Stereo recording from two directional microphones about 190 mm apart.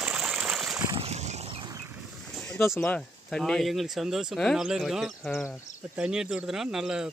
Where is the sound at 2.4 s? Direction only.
Centre (ahead or behind).